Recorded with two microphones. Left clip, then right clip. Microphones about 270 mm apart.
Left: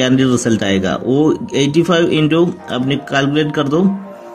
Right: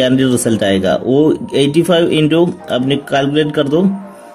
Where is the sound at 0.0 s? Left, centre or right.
Centre.